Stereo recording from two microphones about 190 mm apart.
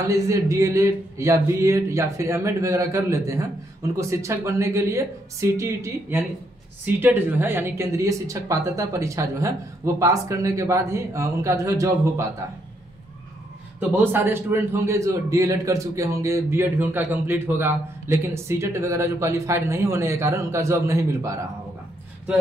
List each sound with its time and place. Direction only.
0.0 s a man's voice: 15° right (ahead or behind)
13.7 s a man's voice: 10° right (ahead or behind)